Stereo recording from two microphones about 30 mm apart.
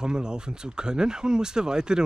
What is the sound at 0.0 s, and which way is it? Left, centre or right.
Speech, right.